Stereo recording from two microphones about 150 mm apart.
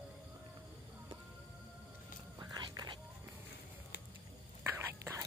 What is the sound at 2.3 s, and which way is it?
Whispering, 25° right (ahead or behind).